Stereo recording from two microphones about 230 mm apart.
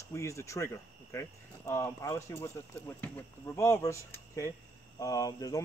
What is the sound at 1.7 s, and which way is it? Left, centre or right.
Speech, centre.